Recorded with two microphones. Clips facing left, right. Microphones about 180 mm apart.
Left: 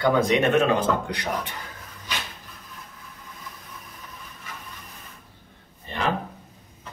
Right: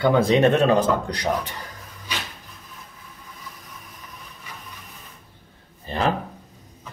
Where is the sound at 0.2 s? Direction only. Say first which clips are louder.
Right 3 dB; 35° right (ahead or behind).